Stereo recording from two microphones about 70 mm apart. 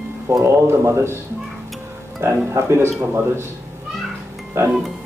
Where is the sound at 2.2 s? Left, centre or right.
Right.